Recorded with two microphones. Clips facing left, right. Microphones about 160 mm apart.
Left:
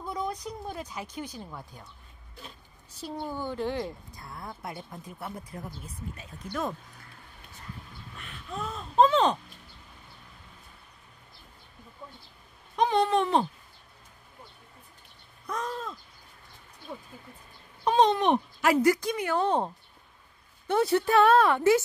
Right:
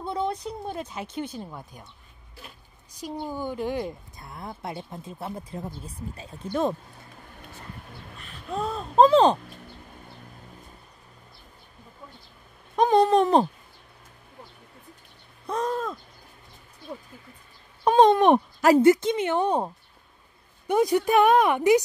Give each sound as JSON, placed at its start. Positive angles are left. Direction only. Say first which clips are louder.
{"t": 0.0, "sound": "speech", "louder": "right 5 dB", "side_deg": -30}
{"t": 8.2, "sound": "speech", "louder": "right 6 dB", "side_deg": -35}
{"t": 12.7, "sound": "speech", "louder": "right 5 dB", "side_deg": -45}
{"t": 15.4, "sound": "a sound", "louder": "right 6 dB", "side_deg": -30}
{"t": 15.7, "sound": "a sound", "louder": "right 7 dB", "side_deg": -50}
{"t": 17.8, "sound": "speech", "louder": "right 6 dB", "side_deg": -50}
{"t": 18.7, "sound": "a woman's voice", "louder": "right 6 dB", "side_deg": -25}